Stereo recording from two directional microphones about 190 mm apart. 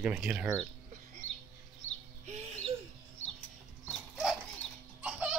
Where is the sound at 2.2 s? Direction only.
40° right (ahead or behind).